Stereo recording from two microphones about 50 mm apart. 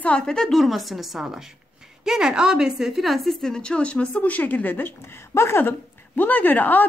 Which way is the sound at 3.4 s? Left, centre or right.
Centre.